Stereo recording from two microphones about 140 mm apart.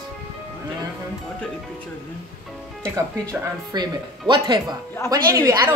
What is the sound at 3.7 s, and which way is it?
Speech, 35° right (ahead or behind).